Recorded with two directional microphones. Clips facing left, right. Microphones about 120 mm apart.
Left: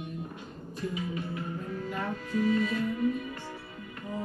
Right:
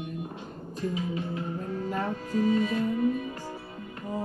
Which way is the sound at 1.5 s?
40° right (ahead or behind).